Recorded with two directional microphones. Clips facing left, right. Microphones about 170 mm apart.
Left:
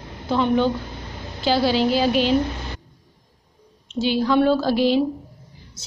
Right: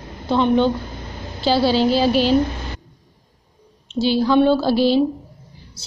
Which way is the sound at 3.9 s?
30° right (ahead or behind).